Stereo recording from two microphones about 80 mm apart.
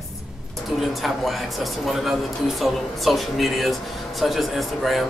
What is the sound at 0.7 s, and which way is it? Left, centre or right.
Speech, centre.